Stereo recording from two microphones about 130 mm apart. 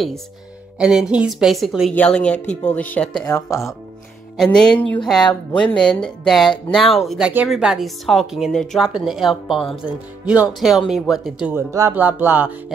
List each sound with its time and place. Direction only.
0.7 s a woman's voice: 5° right (ahead or behind)
4.4 s a woman's voice: 5° left (ahead or behind)
9.8 s a woman's voice: 10° right (ahead or behind)
11.5 s speech: 25° right (ahead or behind)
11.9 s speech: 15° right (ahead or behind)